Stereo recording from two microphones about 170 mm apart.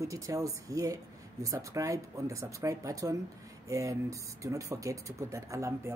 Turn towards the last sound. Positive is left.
turn(degrees=-20)  # may be behind; listen again after turning